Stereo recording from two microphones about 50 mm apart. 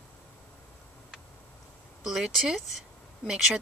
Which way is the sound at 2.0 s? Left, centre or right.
Centre.